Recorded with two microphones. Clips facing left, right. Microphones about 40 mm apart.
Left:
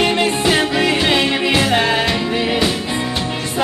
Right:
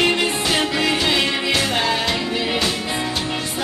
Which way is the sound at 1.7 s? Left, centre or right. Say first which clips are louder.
Left 4 dB; left.